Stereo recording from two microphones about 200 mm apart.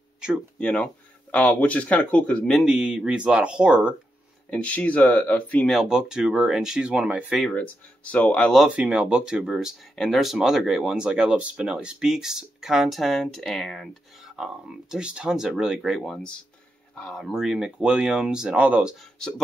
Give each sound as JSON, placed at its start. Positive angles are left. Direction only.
{"t": 0.2, "sound": "speech", "side_deg": -5}
{"t": 1.3, "sound": "speech", "side_deg": 10}
{"t": 4.5, "sound": "speech", "side_deg": 5}